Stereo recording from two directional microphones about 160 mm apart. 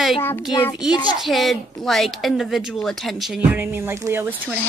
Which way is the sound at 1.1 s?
Centre (ahead or behind).